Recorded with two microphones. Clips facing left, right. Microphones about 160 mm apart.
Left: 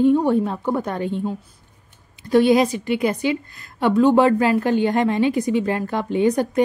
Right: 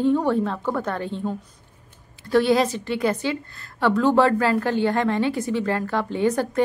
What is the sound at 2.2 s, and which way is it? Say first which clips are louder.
A woman's voice: left 3 dB; 15° left (ahead or behind).